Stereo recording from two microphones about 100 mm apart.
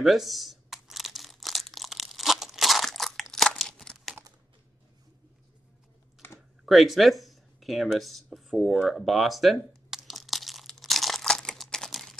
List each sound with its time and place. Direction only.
0.0 s crumpling: centre (ahead or behind)
6.2 s computer keyboard: 20° left (ahead or behind)
6.6 s speech: centre (ahead or behind)
8.8 s crumpling: centre (ahead or behind)